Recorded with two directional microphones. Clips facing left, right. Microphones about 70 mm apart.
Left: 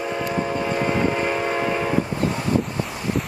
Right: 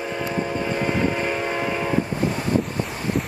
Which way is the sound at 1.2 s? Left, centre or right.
Centre.